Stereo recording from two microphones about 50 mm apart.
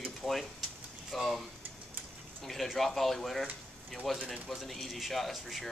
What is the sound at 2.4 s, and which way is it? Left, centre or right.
Speech, centre.